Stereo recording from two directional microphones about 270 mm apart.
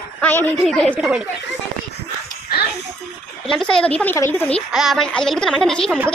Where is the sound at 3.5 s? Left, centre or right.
Centre.